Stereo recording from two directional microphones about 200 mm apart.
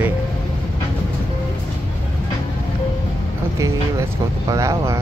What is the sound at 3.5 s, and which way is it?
Speech, 15° right (ahead or behind).